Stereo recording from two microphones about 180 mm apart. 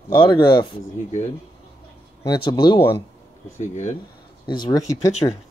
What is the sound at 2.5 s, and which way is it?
Speech, 25° left (ahead or behind).